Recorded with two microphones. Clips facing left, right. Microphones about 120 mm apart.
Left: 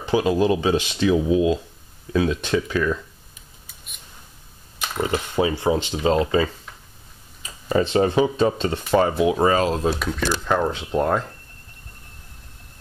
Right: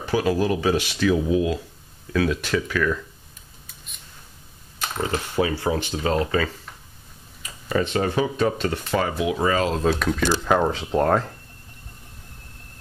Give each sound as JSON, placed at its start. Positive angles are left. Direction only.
{"t": 0.0, "sound": "speech", "side_deg": 20}
{"t": 4.7, "sound": "speech", "side_deg": 15}
{"t": 9.8, "sound": "speech", "side_deg": 5}
{"t": 10.4, "sound": "speech", "side_deg": -10}
{"t": 10.7, "sound": "speech", "side_deg": 0}